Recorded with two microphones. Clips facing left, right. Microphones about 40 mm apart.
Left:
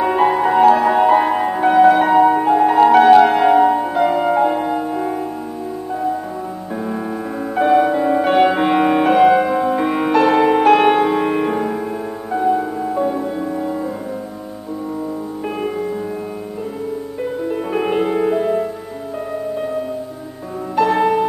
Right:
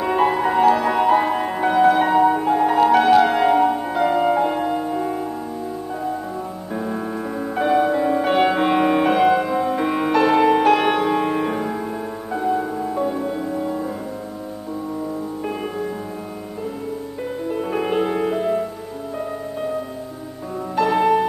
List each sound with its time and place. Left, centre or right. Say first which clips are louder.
0.0 s music: left 3 dB; centre
7.5 s music: left 4 dB; centre
17.5 s music: left 2 dB; centre
20.7 s music: left 2 dB; centre